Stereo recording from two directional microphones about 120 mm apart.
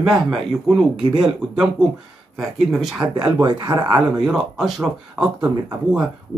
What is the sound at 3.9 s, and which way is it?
A man's voice, 5° right (ahead or behind).